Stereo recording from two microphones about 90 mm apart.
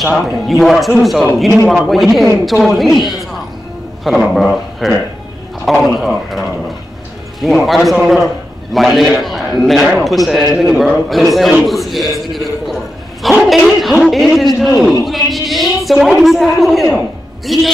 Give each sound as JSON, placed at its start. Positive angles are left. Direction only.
{"t": 0.0, "sound": "a man's voice", "side_deg": 0}
{"t": 7.4, "sound": "a man's voice", "side_deg": 0}
{"t": 13.2, "sound": "a sound", "side_deg": 0}
{"t": 14.0, "sound": "a man's voice", "side_deg": 0}
{"t": 15.0, "sound": "a sound", "side_deg": 0}
{"t": 16.2, "sound": "a man's voice", "side_deg": 0}